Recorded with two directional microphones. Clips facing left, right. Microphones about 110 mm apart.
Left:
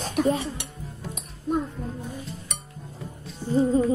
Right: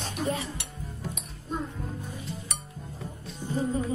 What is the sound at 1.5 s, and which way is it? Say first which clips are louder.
Music: left 8 dB; 65° left (ahead or behind).